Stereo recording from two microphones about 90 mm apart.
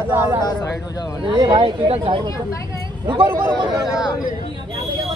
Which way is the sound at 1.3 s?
50° right (ahead or behind).